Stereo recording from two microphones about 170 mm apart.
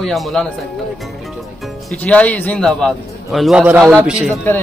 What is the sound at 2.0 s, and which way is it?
A man's voice, 10° left (ahead or behind).